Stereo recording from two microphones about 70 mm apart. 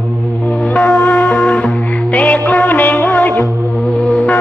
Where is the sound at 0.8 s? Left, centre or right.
Left.